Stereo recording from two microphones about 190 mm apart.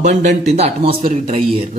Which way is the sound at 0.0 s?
35° right (ahead or behind).